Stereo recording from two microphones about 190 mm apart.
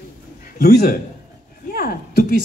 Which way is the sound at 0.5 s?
55° left (ahead or behind).